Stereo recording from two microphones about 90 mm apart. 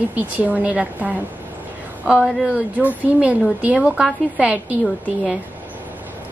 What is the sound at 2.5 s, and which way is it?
A woman's voice, 15° right (ahead or behind).